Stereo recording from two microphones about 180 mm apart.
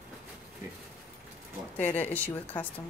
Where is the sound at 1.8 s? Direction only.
10° left (ahead or behind).